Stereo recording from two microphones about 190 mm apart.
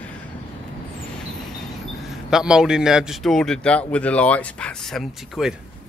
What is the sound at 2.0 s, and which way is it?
A man's voice, 5° right (ahead or behind).